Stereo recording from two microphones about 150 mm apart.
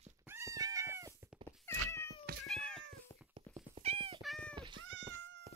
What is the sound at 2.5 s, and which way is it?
Cat, centre (ahead or behind).